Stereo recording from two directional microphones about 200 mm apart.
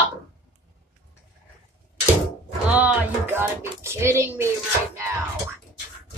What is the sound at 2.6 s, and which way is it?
Music, 5° right (ahead or behind).